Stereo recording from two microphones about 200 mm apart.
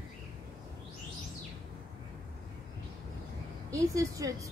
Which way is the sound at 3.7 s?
15° right (ahead or behind).